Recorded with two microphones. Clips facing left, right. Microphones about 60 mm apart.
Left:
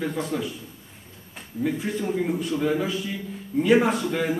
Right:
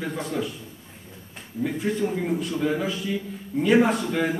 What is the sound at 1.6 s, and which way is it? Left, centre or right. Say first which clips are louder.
A man's voice: right 1 dB; centre.